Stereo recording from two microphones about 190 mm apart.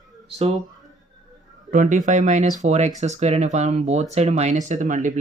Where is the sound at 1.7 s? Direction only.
40° right (ahead or behind).